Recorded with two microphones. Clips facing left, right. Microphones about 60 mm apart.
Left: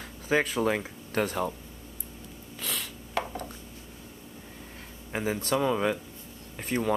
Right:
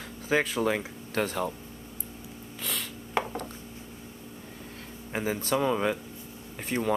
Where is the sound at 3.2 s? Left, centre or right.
Right.